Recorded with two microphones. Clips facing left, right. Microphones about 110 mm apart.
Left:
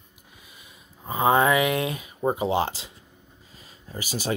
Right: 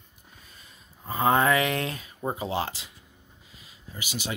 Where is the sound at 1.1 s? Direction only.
15° left (ahead or behind).